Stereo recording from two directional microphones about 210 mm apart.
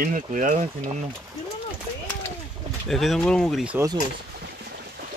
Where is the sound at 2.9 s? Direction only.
Centre (ahead or behind).